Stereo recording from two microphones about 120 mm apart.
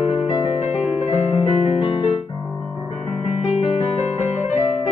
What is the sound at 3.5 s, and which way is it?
Music, 65° left (ahead or behind).